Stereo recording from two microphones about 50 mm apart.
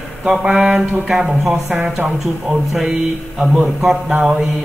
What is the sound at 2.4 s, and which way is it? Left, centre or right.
Speech, centre.